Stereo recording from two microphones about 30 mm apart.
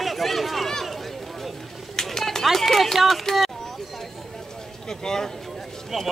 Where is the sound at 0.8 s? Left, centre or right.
Centre.